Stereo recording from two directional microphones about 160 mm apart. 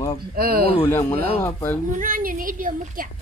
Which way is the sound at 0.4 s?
70° right (ahead or behind).